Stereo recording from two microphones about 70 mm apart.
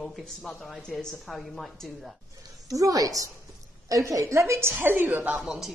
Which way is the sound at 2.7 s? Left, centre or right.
Right.